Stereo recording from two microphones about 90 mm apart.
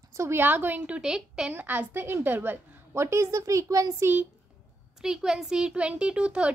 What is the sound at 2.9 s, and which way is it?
A woman's voice, 30° right (ahead or behind).